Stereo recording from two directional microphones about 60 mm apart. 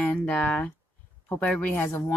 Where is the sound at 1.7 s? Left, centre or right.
Left.